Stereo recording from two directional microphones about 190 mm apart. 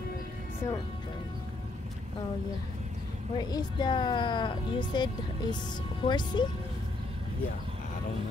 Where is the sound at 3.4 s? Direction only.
20° left (ahead or behind).